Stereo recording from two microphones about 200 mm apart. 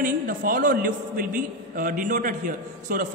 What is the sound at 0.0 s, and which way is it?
A man's voice, 45° right (ahead or behind).